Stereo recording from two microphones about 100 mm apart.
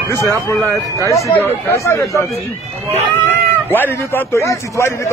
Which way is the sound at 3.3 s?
20° left (ahead or behind).